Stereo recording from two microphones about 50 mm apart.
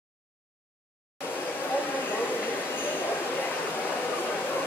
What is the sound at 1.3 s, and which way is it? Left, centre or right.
Train, left.